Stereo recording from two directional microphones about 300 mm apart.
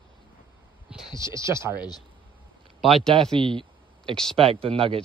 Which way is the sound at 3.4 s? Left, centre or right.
Centre.